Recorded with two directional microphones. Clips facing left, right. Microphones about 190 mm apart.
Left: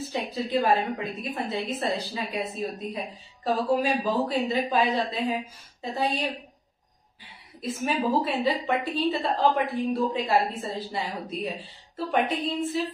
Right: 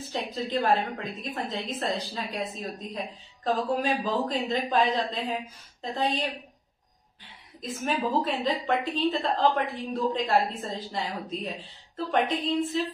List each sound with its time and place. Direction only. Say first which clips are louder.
0.1 s a woman's voice: left 2 dB; 10° left (ahead or behind)
7.6 s a woman's voice: left 2 dB; 5° left (ahead or behind)